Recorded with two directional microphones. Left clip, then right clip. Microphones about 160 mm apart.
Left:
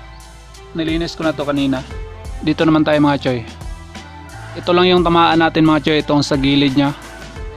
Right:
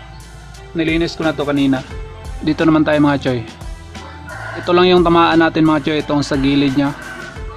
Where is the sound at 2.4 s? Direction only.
45° left (ahead or behind).